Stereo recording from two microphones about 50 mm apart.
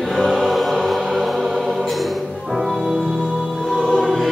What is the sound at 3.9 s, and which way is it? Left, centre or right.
Choir, centre.